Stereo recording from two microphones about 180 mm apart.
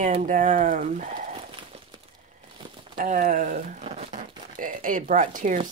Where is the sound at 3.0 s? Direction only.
50° right (ahead or behind).